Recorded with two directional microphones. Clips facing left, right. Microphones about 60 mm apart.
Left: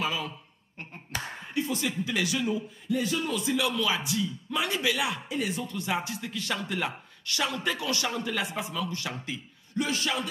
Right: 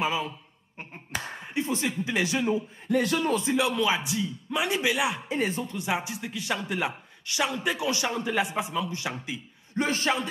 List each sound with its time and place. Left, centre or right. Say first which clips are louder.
0.0 s a man's voice: right 3 dB; right
2.9 s speech: right 4 dB; right
3.3 s a man's voice: right 3 dB; right
5.3 s a man's voice: right 3 dB; right
5.7 s a man's voice: right 1 dB; centre
9.8 s a man's voice: right 3 dB; right